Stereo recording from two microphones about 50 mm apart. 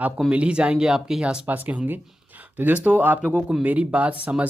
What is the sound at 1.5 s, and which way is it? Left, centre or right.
Speech, right.